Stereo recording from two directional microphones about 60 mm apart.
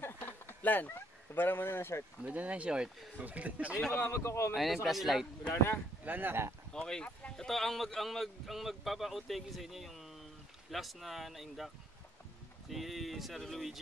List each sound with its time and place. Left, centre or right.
0.0 s a sound: left
2.2 s speech: right
3.9 s a man's voice: left
4.6 s a man's voice: centre
6.0 s speech: right
6.7 s a man's voice: centre